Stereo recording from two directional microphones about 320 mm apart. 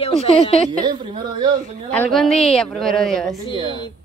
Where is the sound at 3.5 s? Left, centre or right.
Centre.